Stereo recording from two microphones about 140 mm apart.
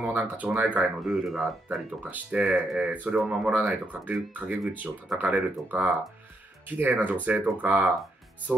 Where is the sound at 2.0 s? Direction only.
10° right (ahead or behind).